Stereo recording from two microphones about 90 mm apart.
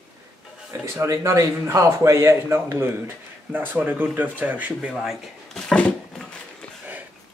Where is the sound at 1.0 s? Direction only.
35° right (ahead or behind); by 4.9 s 15° right (ahead or behind).